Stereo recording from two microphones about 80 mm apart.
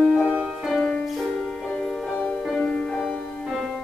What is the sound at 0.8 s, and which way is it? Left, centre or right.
Music, centre.